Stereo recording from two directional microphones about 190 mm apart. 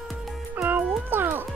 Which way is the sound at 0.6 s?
10° right (ahead or behind).